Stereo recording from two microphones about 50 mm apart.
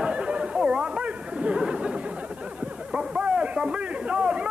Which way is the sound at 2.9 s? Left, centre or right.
Right.